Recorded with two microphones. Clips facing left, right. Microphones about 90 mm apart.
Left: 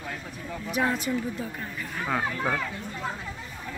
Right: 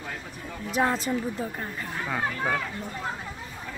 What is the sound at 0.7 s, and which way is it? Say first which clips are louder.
Female singing: right 2 dB; 30° right (ahead or behind).